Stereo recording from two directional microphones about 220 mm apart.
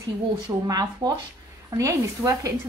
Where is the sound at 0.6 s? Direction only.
15° right (ahead or behind).